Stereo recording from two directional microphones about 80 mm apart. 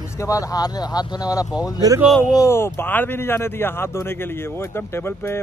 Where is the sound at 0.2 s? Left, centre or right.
Left.